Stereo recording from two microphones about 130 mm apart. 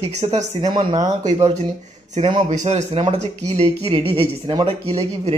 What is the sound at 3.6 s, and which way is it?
Speech, 45° right (ahead or behind).